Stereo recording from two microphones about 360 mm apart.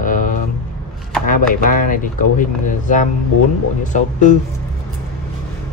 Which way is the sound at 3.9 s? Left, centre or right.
Centre.